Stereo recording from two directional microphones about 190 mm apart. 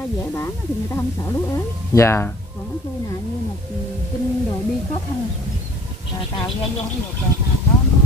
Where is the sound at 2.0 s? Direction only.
15° left (ahead or behind).